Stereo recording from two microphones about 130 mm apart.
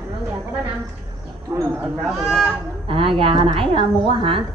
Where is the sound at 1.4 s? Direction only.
25° right (ahead or behind).